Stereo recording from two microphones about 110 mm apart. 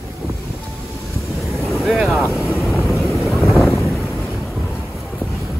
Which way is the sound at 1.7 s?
Centre (ahead or behind).